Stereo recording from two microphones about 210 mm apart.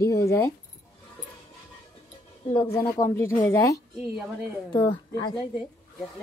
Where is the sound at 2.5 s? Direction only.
10° left (ahead or behind).